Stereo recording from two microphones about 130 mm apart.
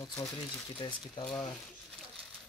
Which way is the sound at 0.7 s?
35° left (ahead or behind).